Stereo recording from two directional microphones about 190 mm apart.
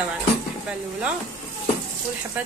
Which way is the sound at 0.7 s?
5° right (ahead or behind).